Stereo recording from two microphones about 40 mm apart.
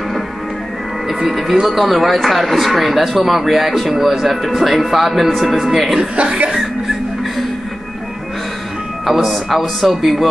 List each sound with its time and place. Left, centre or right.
1.2 s speech: centre
5.9 s speech: right
6.5 s a sound: centre
9.0 s speech: centre